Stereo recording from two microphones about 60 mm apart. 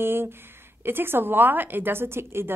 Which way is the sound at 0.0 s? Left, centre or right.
Right.